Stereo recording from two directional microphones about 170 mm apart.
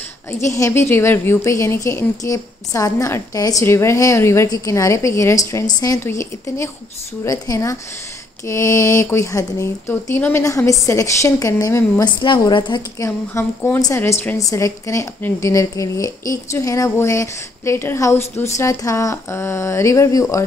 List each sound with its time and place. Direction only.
0.5 s a woman's voice: 15° left (ahead or behind)
13.0 s a woman's voice: 15° left (ahead or behind)